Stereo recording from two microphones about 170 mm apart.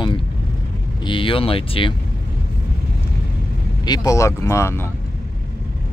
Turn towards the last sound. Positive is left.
turn(degrees=15)  # may be behind; listen again after turning